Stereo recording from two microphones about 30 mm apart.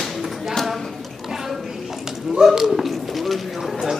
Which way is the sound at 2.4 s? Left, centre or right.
Centre.